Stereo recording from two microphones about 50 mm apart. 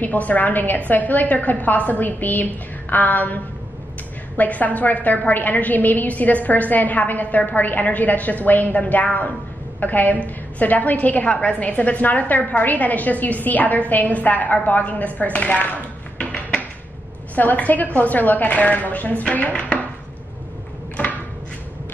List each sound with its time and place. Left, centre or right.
0.0 s a woman's voice: left
4.4 s a woman's voice: left
17.4 s a woman's voice: left